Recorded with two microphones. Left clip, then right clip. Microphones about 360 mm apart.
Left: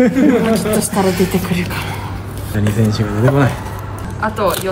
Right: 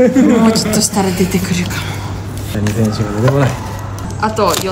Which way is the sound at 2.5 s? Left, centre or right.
Left.